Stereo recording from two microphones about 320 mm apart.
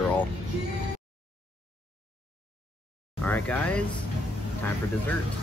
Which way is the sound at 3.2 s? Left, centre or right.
Centre.